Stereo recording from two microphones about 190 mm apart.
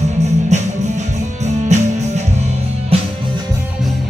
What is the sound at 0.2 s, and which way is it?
Music, 35° right (ahead or behind).